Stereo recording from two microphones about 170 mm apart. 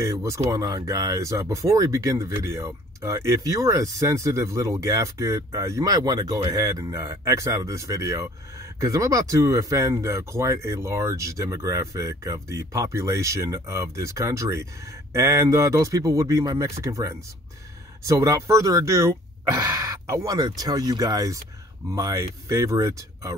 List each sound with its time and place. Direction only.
0.0 s speech: 15° right (ahead or behind)